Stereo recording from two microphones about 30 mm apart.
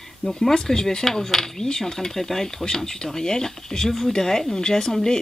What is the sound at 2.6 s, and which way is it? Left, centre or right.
Speech, left.